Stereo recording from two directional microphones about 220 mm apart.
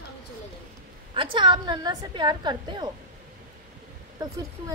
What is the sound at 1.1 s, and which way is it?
A woman's voice, 20° right (ahead or behind).